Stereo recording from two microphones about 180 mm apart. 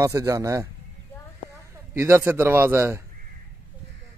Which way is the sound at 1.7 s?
15° right (ahead or behind).